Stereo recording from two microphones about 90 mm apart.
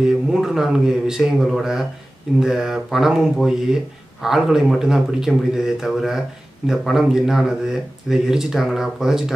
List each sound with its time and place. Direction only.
0.0 s speech: 5° right (ahead or behind)